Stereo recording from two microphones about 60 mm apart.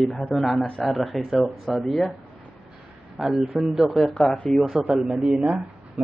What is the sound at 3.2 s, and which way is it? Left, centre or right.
Speech, centre.